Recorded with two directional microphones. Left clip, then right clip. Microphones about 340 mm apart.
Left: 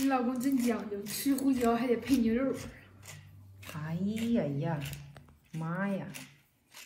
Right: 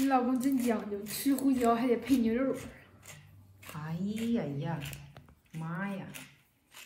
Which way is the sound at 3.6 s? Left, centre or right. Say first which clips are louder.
Left 2 dB; centre.